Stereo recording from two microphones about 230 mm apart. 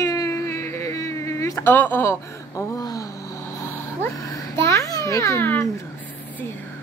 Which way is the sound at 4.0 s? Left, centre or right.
Centre.